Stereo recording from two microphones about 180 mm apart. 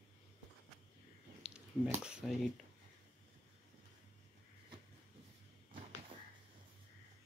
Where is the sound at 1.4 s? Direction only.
5° right (ahead or behind).